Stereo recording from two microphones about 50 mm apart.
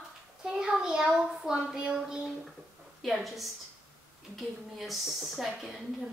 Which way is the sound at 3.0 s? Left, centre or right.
Centre.